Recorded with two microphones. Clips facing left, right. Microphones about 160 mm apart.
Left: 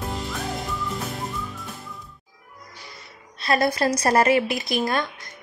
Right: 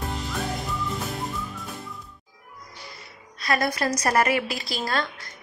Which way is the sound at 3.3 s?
25° left (ahead or behind).